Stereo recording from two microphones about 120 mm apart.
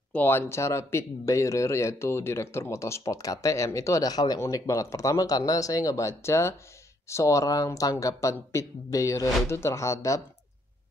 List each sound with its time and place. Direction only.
0.1 s speech: 15° left (ahead or behind)